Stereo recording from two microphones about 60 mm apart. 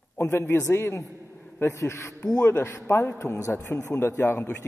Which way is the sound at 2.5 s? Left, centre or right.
Left.